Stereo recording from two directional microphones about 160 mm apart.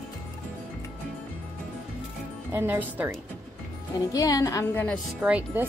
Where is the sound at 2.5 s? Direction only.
10° right (ahead or behind).